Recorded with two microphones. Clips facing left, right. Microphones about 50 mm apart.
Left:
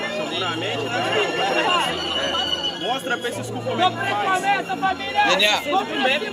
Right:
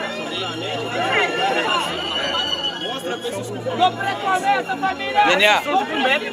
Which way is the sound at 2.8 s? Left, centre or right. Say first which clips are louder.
Left 2 dB; left.